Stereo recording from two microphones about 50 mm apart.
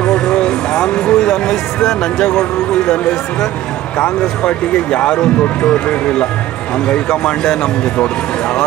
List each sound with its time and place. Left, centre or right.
0.0 s vehicle: centre
4.0 s speech: centre